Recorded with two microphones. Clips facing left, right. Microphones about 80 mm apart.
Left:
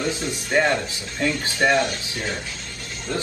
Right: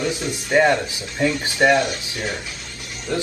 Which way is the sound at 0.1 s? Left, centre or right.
Right.